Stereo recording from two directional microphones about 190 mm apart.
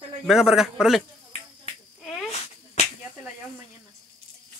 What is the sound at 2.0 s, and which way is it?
Insect, centre (ahead or behind).